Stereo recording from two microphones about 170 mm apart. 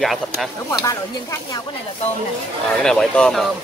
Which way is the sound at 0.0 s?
Centre (ahead or behind).